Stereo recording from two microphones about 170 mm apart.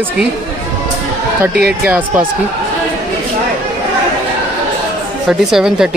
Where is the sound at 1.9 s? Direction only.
10° right (ahead or behind).